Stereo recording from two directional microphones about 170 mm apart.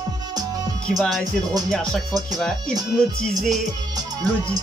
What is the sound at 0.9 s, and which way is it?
Speech, centre (ahead or behind).